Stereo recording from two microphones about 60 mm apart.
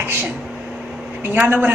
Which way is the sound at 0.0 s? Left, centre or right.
Right.